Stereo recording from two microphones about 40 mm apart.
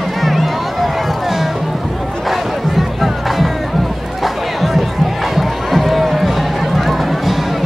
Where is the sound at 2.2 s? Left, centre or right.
Centre.